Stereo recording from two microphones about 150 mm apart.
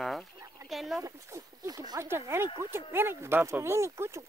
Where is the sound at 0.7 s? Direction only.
Centre (ahead or behind).